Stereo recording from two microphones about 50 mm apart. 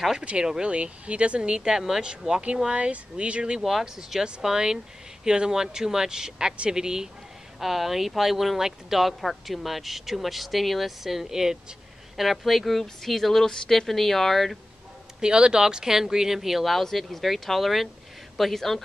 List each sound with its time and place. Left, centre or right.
0.2 s speech: right
3.6 s speech: centre
15.1 s speech: centre